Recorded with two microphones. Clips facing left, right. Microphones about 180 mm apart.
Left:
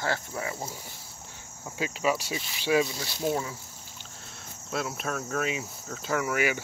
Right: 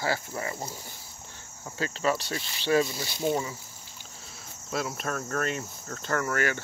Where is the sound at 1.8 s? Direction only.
10° left (ahead or behind).